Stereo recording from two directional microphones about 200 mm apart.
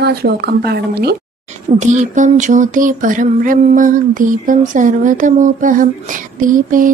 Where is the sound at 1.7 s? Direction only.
35° right (ahead or behind).